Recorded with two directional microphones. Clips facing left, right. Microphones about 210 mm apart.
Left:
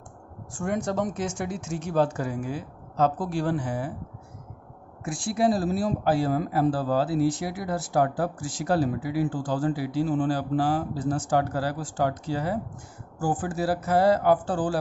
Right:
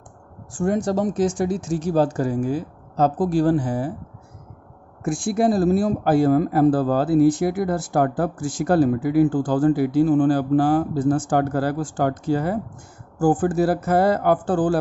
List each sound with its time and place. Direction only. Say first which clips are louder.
0.6 s speech: right 6 dB; 35° right (ahead or behind)
5.0 s speech: right 4 dB; 50° right (ahead or behind)